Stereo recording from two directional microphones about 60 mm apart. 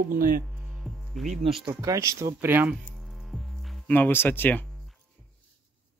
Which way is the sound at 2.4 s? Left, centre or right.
Right.